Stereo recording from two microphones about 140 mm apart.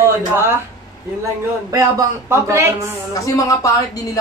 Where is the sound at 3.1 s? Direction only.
25° left (ahead or behind).